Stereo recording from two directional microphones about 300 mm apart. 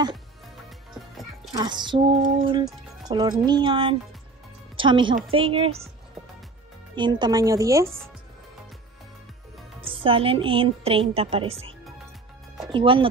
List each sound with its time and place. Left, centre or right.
1.5 s a woman's voice: centre
7.0 s a woman's voice: centre
10.0 s a woman's voice: centre
12.7 s a woman's voice: centre